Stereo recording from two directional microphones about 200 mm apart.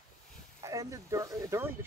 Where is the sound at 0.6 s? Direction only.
15° right (ahead or behind).